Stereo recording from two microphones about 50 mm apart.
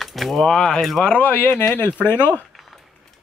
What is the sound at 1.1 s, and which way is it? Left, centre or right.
Speech, left.